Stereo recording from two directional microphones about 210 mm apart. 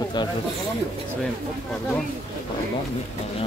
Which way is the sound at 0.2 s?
20° left (ahead or behind).